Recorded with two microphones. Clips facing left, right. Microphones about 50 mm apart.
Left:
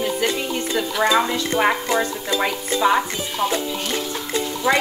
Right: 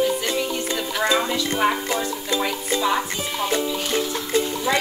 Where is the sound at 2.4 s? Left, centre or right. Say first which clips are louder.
Left 4 dB; left.